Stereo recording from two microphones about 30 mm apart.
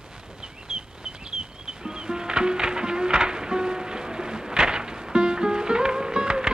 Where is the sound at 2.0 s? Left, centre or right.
Right.